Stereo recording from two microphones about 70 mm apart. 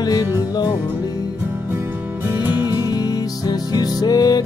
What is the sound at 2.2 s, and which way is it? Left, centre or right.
Music, right.